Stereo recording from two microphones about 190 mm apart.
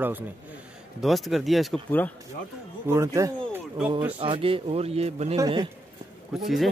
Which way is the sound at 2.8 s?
15° right (ahead or behind).